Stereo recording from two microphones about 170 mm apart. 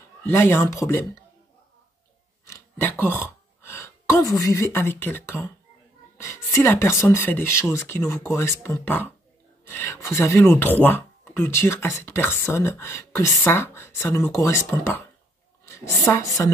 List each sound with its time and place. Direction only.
0.2 s speech: 15° left (ahead or behind)
2.4 s a sound: 15° left (ahead or behind)
4.3 s speech: 15° left (ahead or behind)
16.1 s speech: 20° left (ahead or behind)